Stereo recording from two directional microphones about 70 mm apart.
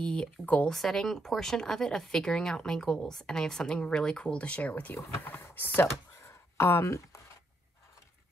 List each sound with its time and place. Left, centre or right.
0.0 s speech: centre
0.7 s speech: centre; by 4.9 s left
5.4 s a sound: left